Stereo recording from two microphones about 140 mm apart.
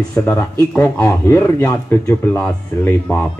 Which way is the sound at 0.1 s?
10° left (ahead or behind).